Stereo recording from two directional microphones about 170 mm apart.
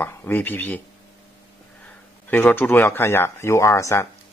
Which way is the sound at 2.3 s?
10° left (ahead or behind).